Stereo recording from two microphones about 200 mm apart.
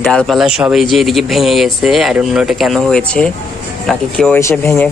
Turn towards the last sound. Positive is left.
turn(degrees=15)  # may be behind; listen again after turning